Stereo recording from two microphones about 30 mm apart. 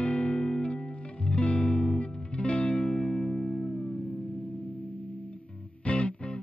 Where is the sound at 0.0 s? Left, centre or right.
Left.